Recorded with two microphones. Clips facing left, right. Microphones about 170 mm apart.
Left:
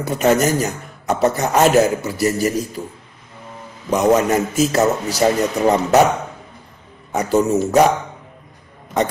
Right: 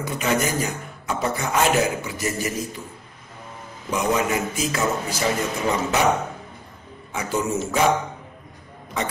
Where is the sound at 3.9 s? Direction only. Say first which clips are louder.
Left 7 dB; 40° left (ahead or behind).